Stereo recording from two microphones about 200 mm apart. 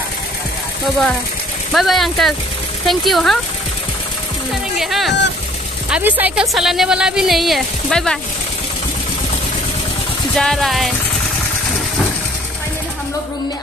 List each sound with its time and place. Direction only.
1.7 s a woman's voice: centre (ahead or behind)
4.7 s a woman's voice: centre (ahead or behind)
10.3 s a woman's voice: 5° left (ahead or behind)